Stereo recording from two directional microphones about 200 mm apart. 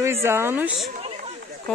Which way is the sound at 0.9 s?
35° right (ahead or behind).